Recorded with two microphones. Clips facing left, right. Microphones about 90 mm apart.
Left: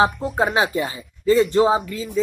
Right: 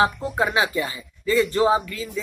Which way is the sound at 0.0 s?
25° left (ahead or behind).